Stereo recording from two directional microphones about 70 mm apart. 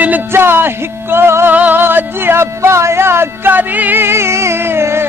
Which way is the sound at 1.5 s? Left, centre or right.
Right.